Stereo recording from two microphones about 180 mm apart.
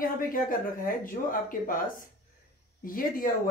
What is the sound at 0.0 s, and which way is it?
Speech, 50° left (ahead or behind).